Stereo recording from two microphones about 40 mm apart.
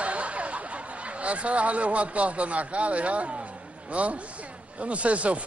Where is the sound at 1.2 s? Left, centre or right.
Right.